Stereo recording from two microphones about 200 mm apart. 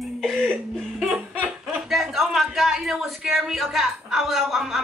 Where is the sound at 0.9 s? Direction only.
5° right (ahead or behind).